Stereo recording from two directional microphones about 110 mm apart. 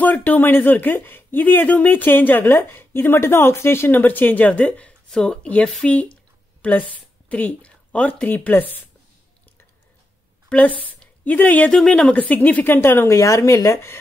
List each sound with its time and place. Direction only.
0.0 s a woman's voice: 15° left (ahead or behind)
10.5 s speech: 15° left (ahead or behind)